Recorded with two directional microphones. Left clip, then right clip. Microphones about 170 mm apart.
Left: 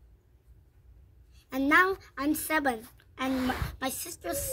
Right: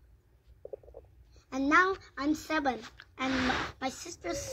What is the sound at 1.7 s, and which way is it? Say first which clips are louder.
Speech: left 2 dB; 20° left (ahead or behind).